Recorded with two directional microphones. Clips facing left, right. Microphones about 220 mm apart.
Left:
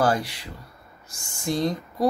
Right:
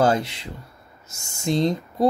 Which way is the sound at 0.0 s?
25° right (ahead or behind).